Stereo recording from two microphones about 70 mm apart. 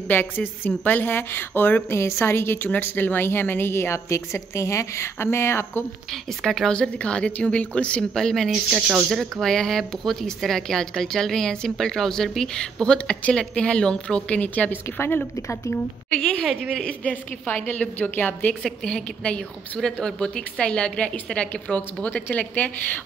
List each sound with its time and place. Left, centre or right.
0.1 s a woman's voice: left
2.0 s a woman's voice: left
6.4 s a woman's voice: centre; by 15.2 s left
16.1 s a woman's voice: centre
18.5 s a woman's voice: centre